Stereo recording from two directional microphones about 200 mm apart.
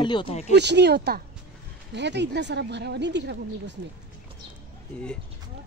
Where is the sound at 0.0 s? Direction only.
25° left (ahead or behind).